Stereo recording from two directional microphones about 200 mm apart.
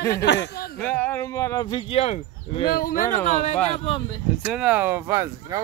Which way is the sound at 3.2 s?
35° left (ahead or behind).